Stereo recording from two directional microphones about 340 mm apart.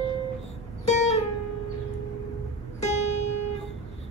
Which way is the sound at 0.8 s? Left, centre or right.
Centre.